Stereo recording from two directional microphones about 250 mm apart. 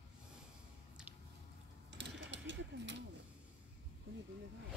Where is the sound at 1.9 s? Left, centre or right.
Right.